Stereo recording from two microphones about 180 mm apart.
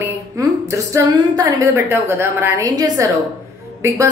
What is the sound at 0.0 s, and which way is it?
A woman's voice, 15° right (ahead or behind).